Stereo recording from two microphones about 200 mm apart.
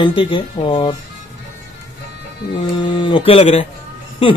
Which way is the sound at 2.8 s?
25° left (ahead or behind).